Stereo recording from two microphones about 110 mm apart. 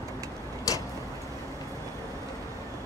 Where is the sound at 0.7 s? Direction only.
30° left (ahead or behind).